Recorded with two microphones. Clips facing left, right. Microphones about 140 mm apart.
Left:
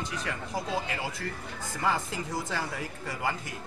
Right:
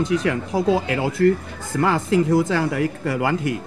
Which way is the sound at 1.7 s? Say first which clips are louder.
Right 12 dB; 75° right (ahead or behind).